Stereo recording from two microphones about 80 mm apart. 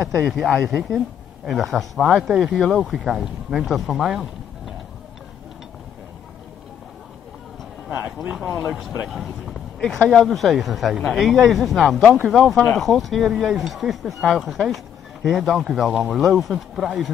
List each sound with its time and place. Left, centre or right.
0.0 s speech: centre
7.9 s a sound: centre
8.3 s speech: centre